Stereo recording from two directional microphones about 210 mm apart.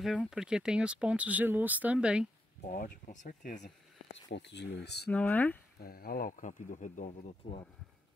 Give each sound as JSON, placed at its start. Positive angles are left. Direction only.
{"t": 0.0, "sound": "speech", "side_deg": 0}
{"t": 2.7, "sound": "speech", "side_deg": 40}
{"t": 3.6, "sound": "speech", "side_deg": 55}
{"t": 5.1, "sound": "speech", "side_deg": 5}
{"t": 5.8, "sound": "speech", "side_deg": 45}